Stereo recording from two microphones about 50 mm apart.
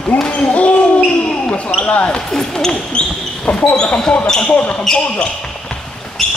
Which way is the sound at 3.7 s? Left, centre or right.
Centre.